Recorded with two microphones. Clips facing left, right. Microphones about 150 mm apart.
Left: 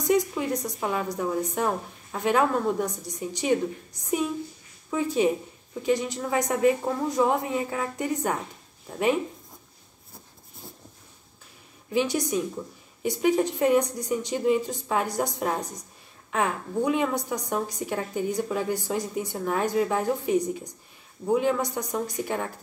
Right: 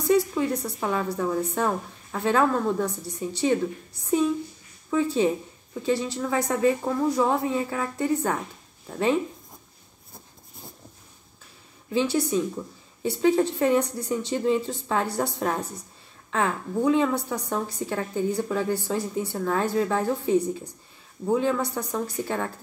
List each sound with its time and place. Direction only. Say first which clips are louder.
0.1 s a woman's voice: right 2 dB; 15° left (ahead or behind)
11.9 s a woman's voice: right 2 dB; 15° left (ahead or behind)